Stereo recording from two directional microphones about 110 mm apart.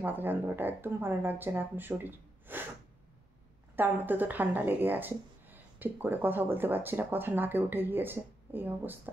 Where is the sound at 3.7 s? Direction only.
15° right (ahead or behind).